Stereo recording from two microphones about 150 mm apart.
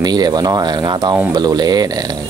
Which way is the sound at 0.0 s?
25° right (ahead or behind).